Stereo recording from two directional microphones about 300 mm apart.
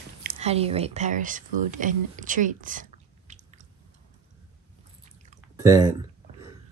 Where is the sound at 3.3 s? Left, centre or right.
Right.